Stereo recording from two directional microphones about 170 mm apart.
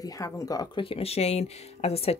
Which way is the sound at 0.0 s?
20° left (ahead or behind).